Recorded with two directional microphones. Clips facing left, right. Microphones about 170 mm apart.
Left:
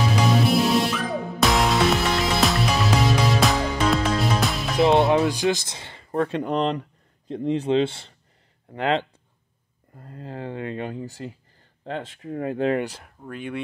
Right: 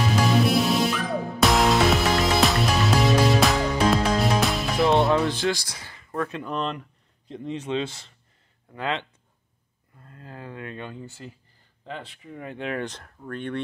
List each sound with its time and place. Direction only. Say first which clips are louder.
0.0 s music: even; centre (ahead or behind)
5.3 s speech: left 3 dB; 20° left (ahead or behind)
9.9 s speech: left 7 dB; 35° left (ahead or behind)
12.4 s speech: left 9 dB; 35° left (ahead or behind)
12.8 s speech: left 1 dB; 10° left (ahead or behind)